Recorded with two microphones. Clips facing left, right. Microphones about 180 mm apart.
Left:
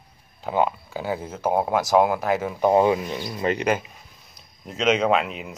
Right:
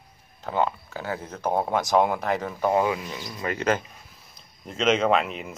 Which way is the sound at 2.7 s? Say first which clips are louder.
Left 6 dB; 25° left (ahead or behind).